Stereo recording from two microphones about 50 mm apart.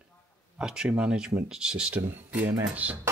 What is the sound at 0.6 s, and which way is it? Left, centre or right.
Speech, centre.